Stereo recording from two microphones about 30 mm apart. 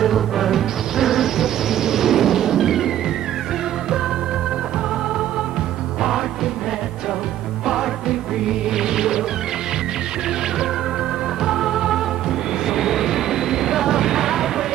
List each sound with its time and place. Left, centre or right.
0.0 s music: centre
6.0 s music: centre
7.6 s music: centre
11.4 s music: centre
12.6 s vehicle: centre